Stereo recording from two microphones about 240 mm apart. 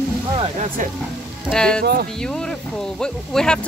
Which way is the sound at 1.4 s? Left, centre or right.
Centre.